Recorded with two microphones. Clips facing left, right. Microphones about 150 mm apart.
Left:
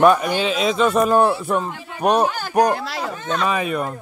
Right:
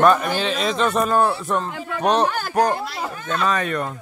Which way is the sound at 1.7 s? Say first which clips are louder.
Right 7 dB; 60° right (ahead or behind).